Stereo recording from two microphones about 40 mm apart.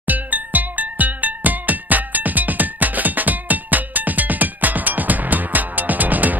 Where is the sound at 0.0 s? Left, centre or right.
Right.